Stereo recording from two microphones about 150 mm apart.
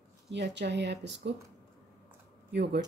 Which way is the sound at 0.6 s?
90° right.